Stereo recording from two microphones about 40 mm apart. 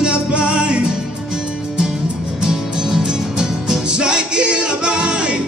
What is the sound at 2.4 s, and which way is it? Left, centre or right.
Music, centre.